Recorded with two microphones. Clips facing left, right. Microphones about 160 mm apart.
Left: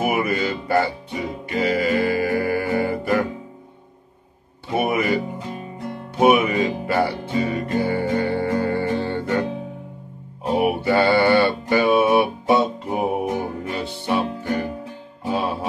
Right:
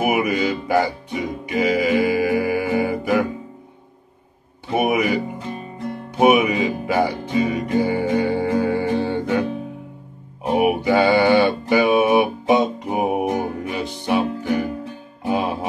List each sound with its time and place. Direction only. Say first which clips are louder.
0.0 s music: right 2 dB; 15° right (ahead or behind)
4.7 s music: right 2 dB; 15° right (ahead or behind)